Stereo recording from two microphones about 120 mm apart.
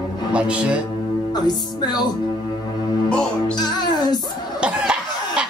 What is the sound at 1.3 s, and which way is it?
Music, 35° left (ahead or behind).